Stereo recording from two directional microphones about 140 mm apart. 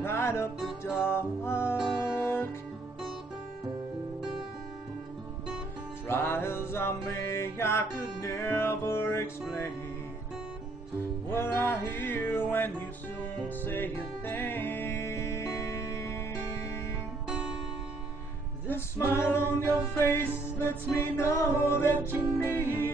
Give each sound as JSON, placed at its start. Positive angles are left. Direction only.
{"t": 0.0, "sound": "music", "side_deg": 15}
{"t": 2.0, "sound": "guitar", "side_deg": 15}
{"t": 6.0, "sound": "music", "side_deg": 15}
{"t": 11.3, "sound": "music", "side_deg": 15}
{"t": 18.7, "sound": "music", "side_deg": 20}
{"t": 22.0, "sound": "music", "side_deg": -15}
{"t": 22.4, "sound": "music", "side_deg": 15}